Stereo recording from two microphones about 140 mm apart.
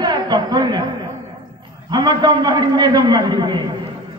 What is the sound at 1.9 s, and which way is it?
A man's voice, 30° right (ahead or behind).